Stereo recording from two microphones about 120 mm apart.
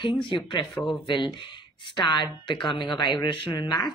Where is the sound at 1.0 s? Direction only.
40° left (ahead or behind).